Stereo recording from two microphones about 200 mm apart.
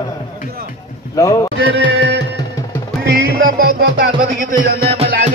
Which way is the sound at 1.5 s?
60° right (ahead or behind).